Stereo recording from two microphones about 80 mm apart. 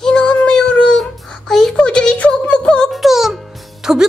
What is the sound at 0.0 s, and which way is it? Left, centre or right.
Child singing, centre.